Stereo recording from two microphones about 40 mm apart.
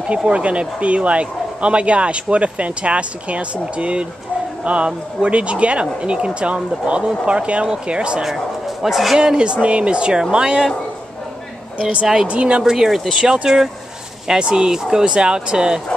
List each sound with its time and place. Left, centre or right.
0.0 s speech: right
8.2 s speech: centre
9.2 s speech: right
12.3 s speech: right